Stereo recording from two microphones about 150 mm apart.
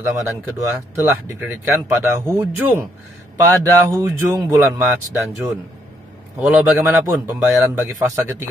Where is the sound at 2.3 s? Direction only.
15° right (ahead or behind).